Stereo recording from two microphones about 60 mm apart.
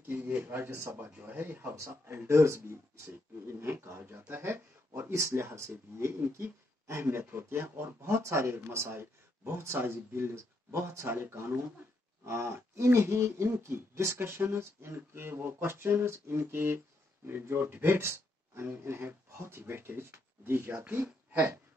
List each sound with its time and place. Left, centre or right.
0.1 s speech: right
5.0 s speech: right
8.7 s speech: right